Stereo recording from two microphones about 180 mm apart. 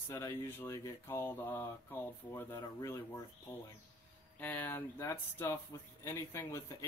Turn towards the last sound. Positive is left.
turn(degrees=15)  # may be behind; listen again after turning